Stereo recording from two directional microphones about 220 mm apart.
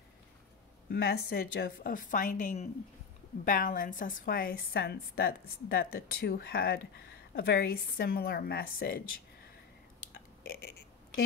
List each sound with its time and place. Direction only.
0.8 s a woman's voice: 45° left (ahead or behind)